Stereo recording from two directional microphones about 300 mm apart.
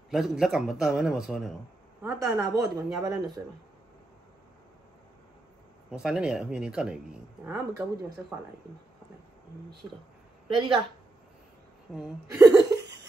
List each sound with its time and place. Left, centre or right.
0.1 s speech: centre
5.9 s speech: centre
10.5 s speech: centre
11.9 s speech: centre
12.4 s laughter: centre